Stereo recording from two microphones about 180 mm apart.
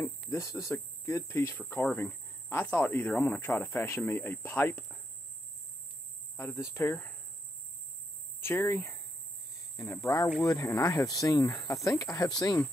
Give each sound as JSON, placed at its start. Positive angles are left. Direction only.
{"t": 0.3, "sound": "speech", "side_deg": 15}
{"t": 6.3, "sound": "speech", "side_deg": 15}
{"t": 8.4, "sound": "speech", "side_deg": 15}